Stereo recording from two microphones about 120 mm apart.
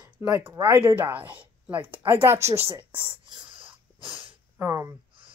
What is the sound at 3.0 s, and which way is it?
Speech, 45° right (ahead or behind).